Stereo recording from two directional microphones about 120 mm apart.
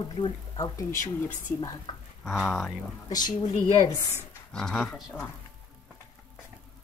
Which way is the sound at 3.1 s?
35° left (ahead or behind).